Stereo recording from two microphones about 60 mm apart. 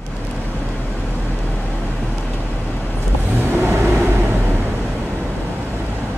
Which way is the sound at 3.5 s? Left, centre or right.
Right.